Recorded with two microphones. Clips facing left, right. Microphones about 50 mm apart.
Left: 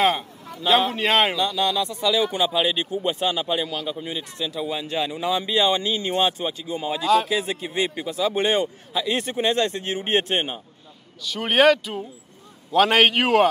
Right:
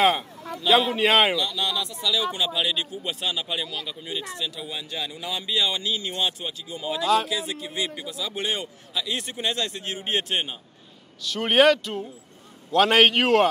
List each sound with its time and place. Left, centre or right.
0.7 s speech: centre
1.4 s speech: left
11.2 s speech: centre